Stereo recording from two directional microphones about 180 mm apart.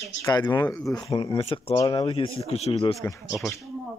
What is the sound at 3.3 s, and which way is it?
Speech, centre (ahead or behind).